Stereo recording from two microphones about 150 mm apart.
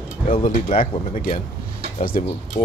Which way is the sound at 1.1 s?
65° left (ahead or behind).